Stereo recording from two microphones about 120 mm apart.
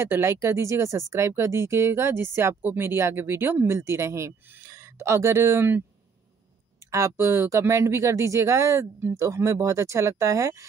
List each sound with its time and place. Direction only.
0.0 s speech: 20° right (ahead or behind)
6.9 s speech: 20° right (ahead or behind)